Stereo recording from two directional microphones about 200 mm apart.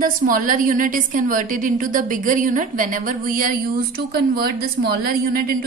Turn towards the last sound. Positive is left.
turn(degrees=-50)  # may be behind; listen again after turning